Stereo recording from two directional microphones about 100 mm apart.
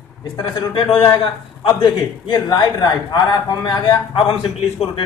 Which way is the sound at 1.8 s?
50° left (ahead or behind).